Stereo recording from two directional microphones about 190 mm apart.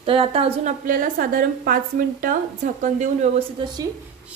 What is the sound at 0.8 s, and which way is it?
A woman's voice, 45° right (ahead or behind).